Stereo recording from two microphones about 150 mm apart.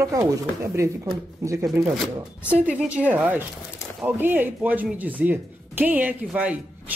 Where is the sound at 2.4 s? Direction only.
10° right (ahead or behind).